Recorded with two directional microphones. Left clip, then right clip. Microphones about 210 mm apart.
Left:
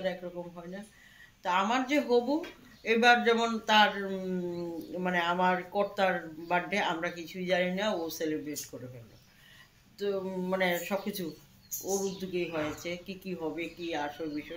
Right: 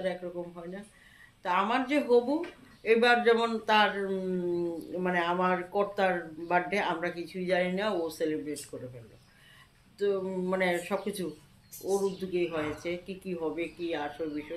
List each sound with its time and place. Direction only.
0.0 s a man's voice: centre (ahead or behind)
9.9 s a man's voice: centre (ahead or behind)